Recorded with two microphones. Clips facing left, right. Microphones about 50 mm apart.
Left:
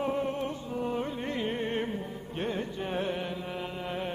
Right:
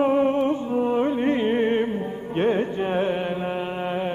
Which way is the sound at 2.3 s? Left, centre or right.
Right.